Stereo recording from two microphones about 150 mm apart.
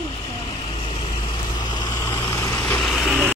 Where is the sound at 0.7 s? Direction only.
40° left (ahead or behind); by 2.6 s 20° left (ahead or behind).